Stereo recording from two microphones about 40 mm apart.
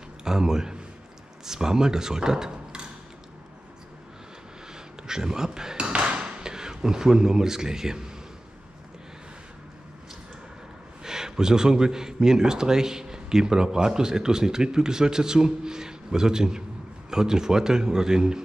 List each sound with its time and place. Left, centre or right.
0.2 s speech: centre
4.7 s dishes: centre
11.1 s speech: centre